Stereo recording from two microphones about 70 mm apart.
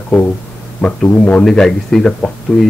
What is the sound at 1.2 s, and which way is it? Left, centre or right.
Speech, centre.